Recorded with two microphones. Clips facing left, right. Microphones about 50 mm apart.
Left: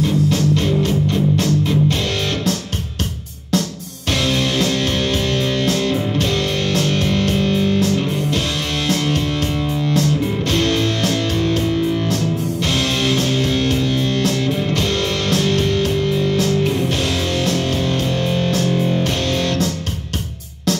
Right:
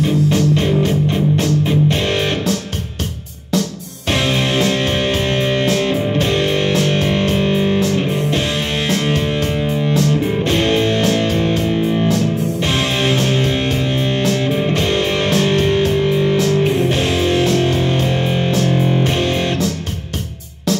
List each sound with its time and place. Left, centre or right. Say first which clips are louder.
1.1 s music: right 1 dB; right
4.1 s music: right 2 dB; right